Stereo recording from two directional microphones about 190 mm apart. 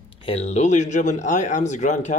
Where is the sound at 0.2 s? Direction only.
35° left (ahead or behind).